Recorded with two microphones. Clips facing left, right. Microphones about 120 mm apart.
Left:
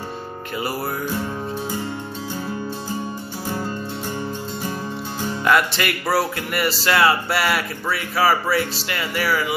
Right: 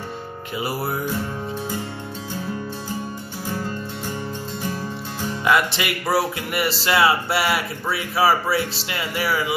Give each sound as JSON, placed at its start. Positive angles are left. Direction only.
{"t": 0.6, "sound": "speech", "side_deg": -20}
{"t": 5.4, "sound": "speech", "side_deg": -10}